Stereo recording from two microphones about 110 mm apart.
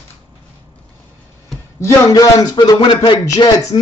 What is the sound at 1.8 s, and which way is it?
Speech, 30° left (ahead or behind).